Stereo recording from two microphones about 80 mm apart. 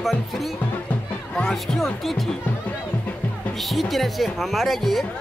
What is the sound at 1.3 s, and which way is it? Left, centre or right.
Speech, centre.